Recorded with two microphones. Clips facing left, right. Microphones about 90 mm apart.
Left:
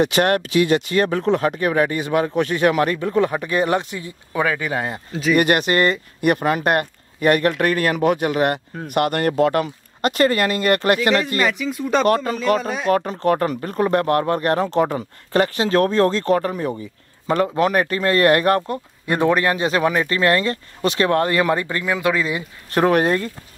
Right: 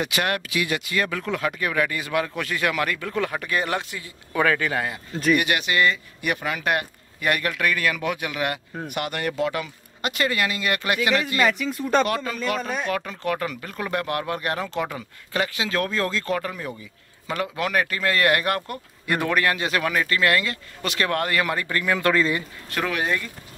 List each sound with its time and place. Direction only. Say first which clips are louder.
0.0 s speech: left 8 dB; 40° left (ahead or behind); by 4.8 s 15° left (ahead or behind)
5.3 s speech: left 5 dB; 45° left (ahead or behind)
11.3 s speech: left 1 dB; centre (ahead or behind)
12.1 s speech: left 8 dB; 40° left (ahead or behind); by 22.4 s 15° left (ahead or behind)
22.7 s speech: left 9 dB; 40° left (ahead or behind)